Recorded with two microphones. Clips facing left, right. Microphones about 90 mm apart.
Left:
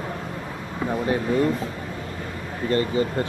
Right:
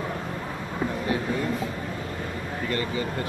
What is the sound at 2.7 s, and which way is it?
Speech, 35° left (ahead or behind).